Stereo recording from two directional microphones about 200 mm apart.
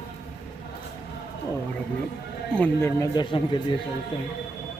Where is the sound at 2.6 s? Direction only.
15° left (ahead or behind).